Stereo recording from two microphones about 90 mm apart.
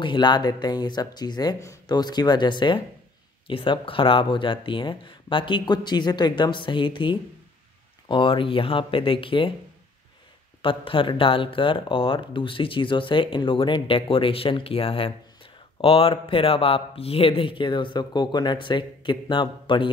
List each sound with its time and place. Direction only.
0.0 s speech: 60° left (ahead or behind)
3.4 s speech: 75° left (ahead or behind)
10.6 s speech: 80° left